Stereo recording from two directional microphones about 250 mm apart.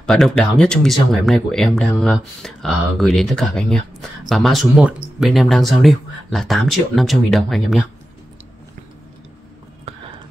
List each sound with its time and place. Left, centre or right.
0.0 s speech: centre
9.9 s whispering: right